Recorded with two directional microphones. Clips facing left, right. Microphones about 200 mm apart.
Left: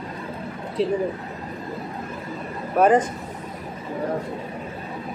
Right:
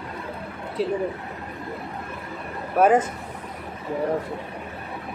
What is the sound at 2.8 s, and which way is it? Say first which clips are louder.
Speech: left 1 dB; 5° right (ahead or behind).